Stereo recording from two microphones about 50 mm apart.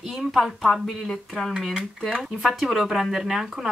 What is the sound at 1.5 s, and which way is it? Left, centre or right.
Speech, centre.